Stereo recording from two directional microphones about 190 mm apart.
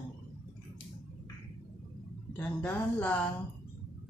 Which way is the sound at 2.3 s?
10° left (ahead or behind).